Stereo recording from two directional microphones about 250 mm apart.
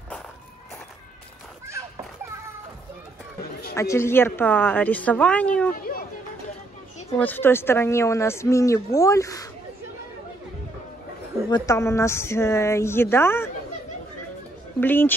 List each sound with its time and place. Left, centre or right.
3.7 s speech: centre
5.8 s a sound: left
7.2 s speech: centre
11.5 s speech: centre
14.8 s speech: centre